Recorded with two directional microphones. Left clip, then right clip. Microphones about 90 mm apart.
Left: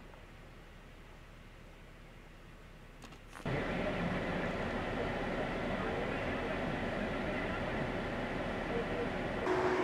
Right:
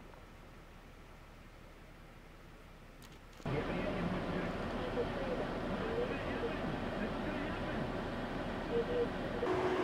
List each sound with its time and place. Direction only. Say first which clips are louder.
3.4 s vehicle: left 1 dB; 35° left (ahead or behind)
9.5 s train: left 3 dB; centre (ahead or behind)